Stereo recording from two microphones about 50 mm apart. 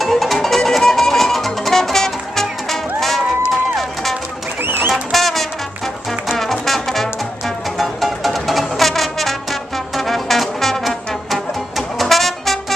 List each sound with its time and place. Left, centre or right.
0.0 s music: centre
4.6 s music: right
5.1 s music: centre